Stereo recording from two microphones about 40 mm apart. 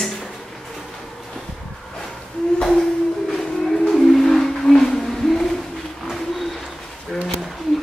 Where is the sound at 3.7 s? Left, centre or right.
Centre.